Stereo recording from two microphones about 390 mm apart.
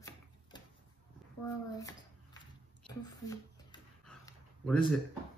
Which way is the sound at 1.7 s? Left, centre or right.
Centre.